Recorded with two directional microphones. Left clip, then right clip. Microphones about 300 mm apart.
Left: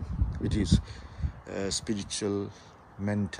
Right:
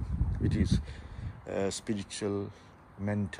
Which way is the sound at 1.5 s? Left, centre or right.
Centre.